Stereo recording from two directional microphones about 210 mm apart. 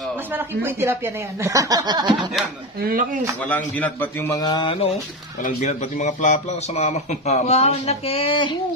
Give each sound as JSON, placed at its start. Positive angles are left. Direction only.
{"t": 0.3, "sound": "speech", "side_deg": -10}
{"t": 2.8, "sound": "speech", "side_deg": -45}
{"t": 3.4, "sound": "a man's voice", "side_deg": 10}